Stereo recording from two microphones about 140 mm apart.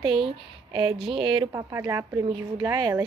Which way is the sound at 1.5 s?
20° right (ahead or behind).